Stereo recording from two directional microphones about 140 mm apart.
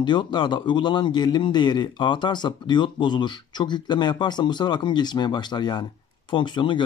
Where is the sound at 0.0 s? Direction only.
35° left (ahead or behind).